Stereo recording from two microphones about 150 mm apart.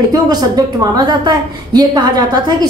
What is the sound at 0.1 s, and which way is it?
A woman's voice, 25° right (ahead or behind).